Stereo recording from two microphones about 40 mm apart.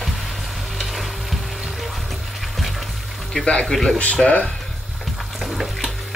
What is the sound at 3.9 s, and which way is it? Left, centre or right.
Speech, left.